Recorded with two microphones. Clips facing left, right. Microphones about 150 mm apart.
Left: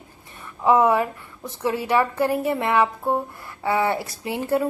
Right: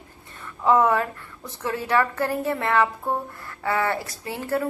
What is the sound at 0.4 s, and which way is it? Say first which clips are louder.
A woman's voice: left 1 dB; 15° left (ahead or behind).